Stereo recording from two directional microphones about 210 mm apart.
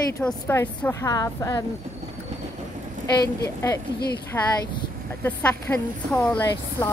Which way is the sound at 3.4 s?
15° left (ahead or behind).